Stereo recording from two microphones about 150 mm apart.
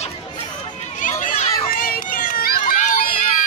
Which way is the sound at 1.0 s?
55° left (ahead or behind).